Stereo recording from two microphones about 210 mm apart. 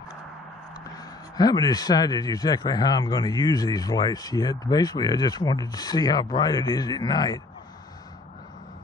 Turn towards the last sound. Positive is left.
turn(degrees=20)  # may be behind; listen again after turning